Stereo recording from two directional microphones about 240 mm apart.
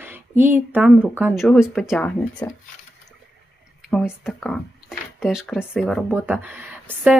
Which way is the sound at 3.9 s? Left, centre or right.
Centre.